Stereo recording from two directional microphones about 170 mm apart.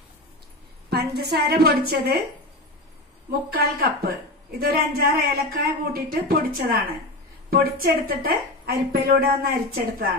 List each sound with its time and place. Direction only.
0.8 s a woman's voice: 70° right (ahead or behind)
3.3 s a woman's voice: 60° right (ahead or behind)